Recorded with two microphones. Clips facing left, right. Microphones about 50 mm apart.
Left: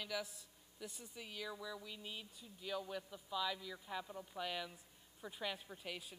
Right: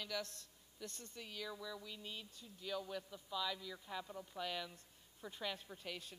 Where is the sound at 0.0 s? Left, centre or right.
Centre.